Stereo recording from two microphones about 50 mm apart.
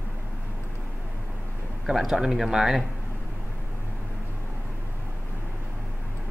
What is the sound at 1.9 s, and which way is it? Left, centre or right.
Speech, centre.